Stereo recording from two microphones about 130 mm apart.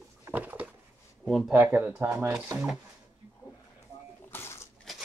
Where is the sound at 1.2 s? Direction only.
5° right (ahead or behind).